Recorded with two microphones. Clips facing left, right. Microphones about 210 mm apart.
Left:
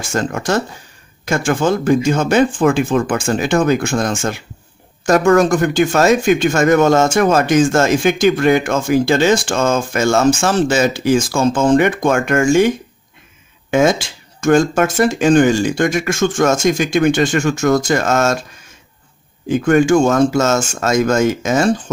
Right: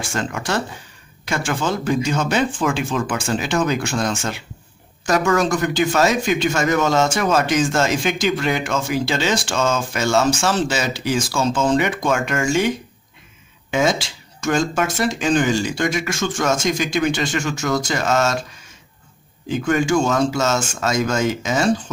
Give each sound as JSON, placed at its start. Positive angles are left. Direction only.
{"t": 0.0, "sound": "speech", "side_deg": 45}
{"t": 19.5, "sound": "speech", "side_deg": 55}